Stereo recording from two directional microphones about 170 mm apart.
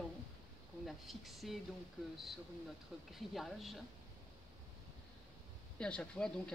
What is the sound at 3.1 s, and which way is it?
Speech, centre (ahead or behind).